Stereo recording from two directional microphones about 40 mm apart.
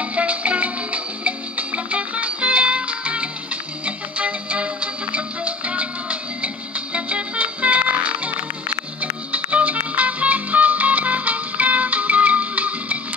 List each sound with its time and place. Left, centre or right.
0.0 s music: right